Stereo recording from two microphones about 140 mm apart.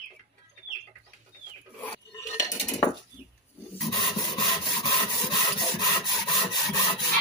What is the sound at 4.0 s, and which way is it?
Wood, 30° left (ahead or behind).